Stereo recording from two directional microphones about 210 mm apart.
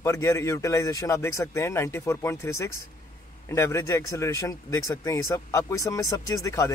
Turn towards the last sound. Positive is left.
turn(degrees=15)  # may be behind; listen again after turning